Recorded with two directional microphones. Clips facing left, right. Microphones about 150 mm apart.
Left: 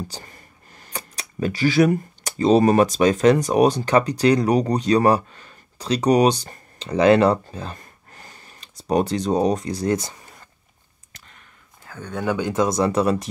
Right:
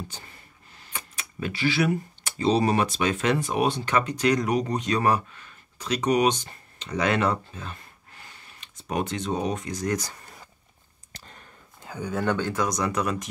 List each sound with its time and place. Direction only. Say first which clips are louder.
0.1 s speech: left 6 dB; 45° left (ahead or behind); by 10.1 s 25° left (ahead or behind)
11.1 s a sound: right 3 dB; 35° right (ahead or behind)
11.8 s a sound: right 3 dB; 15° right (ahead or behind)
12.1 s speech: left 2 dB; centre (ahead or behind)
12.4 s speech: left 5 dB; 15° left (ahead or behind)
12.6 s speech: left 10 dB; 30° left (ahead or behind)